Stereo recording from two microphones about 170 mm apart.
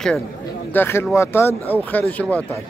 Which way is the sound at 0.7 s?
15° left (ahead or behind).